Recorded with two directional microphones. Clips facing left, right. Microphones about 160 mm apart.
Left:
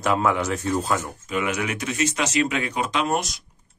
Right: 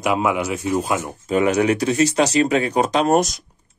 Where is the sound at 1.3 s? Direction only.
35° right (ahead or behind).